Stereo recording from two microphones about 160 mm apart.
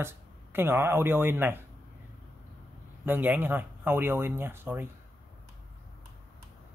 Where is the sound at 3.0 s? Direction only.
10° right (ahead or behind).